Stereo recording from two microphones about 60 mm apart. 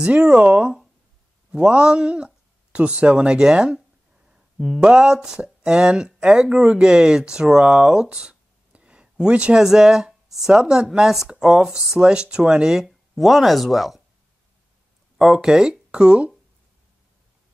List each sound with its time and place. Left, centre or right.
0.2 s speech: centre
15.1 s speech: centre